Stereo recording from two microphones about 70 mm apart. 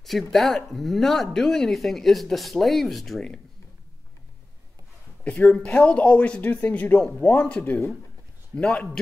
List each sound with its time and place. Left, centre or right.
0.0 s speech: centre
5.3 s speech: centre
5.7 s speech: centre